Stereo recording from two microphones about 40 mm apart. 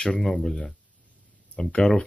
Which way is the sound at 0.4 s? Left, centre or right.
Centre.